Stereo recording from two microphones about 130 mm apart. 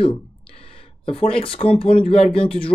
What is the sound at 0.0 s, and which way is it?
Speech, 45° left (ahead or behind).